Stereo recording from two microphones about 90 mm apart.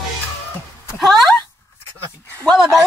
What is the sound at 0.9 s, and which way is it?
Speech, centre (ahead or behind).